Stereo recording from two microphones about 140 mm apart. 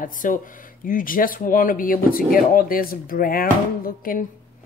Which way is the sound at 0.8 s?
80° left.